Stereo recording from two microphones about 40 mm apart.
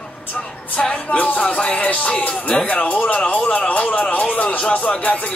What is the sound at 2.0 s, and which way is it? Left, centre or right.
Speech, left.